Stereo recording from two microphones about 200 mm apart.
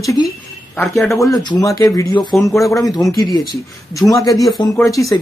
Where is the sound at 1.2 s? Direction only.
15° left (ahead or behind).